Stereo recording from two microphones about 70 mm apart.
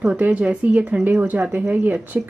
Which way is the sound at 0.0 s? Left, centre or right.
Right.